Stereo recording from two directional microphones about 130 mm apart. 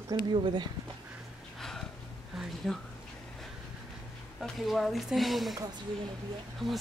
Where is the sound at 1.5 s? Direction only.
Centre (ahead or behind).